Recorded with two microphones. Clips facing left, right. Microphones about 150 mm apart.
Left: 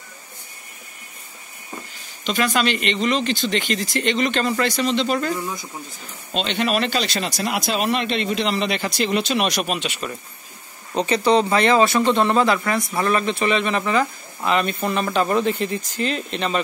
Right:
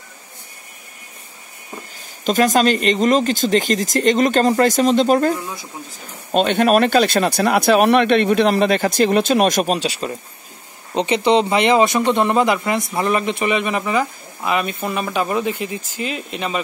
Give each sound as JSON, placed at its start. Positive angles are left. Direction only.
{"t": 2.2, "sound": "speech", "side_deg": -45}
{"t": 6.3, "sound": "speech", "side_deg": -50}
{"t": 11.0, "sound": "speech", "side_deg": -20}